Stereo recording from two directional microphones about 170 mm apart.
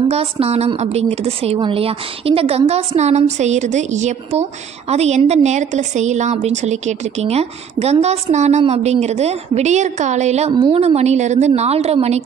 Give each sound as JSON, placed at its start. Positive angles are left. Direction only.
{"t": 0.1, "sound": "a woman's voice", "side_deg": -35}
{"t": 10.5, "sound": "a woman's voice", "side_deg": -30}